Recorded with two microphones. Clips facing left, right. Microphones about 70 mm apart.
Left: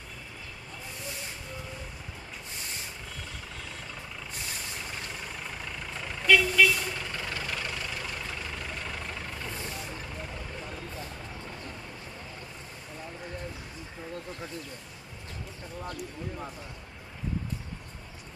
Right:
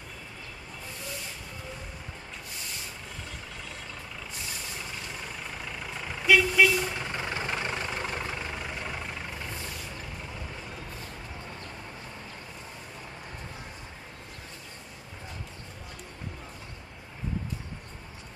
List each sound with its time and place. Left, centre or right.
5.7 s vehicle: centre; by 8.3 s right